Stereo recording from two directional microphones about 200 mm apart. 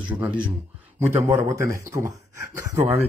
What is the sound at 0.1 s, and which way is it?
Speech, 10° right (ahead or behind).